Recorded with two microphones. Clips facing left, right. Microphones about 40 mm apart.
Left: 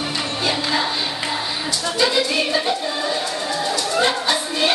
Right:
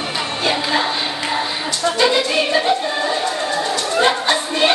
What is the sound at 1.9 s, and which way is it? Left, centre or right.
Music, centre.